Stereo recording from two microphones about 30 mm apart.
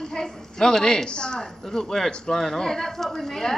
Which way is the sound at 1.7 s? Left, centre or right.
Centre.